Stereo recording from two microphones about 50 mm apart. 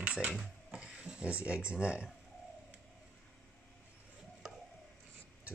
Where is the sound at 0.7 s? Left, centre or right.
Centre.